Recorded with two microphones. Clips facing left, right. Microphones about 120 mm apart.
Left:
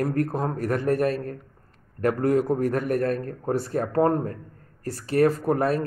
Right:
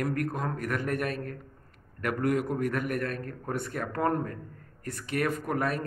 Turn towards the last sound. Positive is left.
turn(degrees=35)  # may be behind; listen again after turning